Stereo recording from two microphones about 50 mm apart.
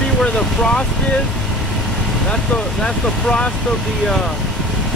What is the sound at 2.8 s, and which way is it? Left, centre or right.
Speech, centre.